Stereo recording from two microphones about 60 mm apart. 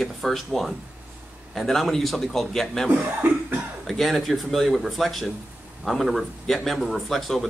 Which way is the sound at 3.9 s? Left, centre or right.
Centre.